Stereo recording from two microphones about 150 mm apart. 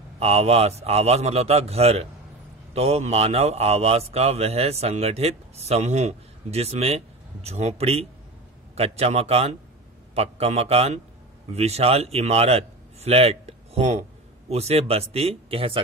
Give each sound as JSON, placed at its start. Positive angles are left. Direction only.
{"t": 0.2, "sound": "a man's voice", "side_deg": -45}